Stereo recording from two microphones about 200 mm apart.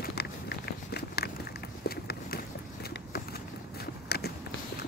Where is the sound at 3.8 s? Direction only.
50° left (ahead or behind).